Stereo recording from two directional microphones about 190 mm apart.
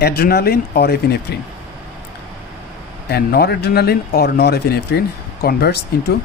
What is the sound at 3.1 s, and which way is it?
A man's voice, 55° left (ahead or behind).